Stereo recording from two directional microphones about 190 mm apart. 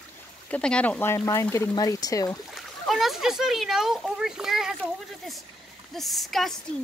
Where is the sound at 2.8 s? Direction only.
Centre (ahead or behind).